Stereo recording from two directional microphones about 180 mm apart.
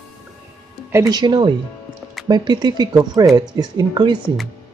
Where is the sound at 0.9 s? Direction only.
20° right (ahead or behind).